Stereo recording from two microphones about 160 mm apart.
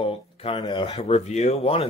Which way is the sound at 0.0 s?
35° left (ahead or behind).